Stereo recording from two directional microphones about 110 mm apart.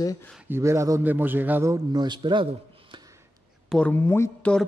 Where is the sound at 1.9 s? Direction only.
45° right (ahead or behind).